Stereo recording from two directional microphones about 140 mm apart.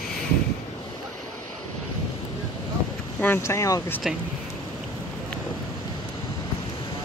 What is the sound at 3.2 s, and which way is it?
Speech, 20° left (ahead or behind).